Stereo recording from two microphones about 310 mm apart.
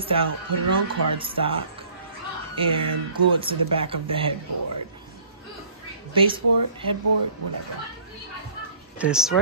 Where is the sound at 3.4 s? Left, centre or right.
Centre.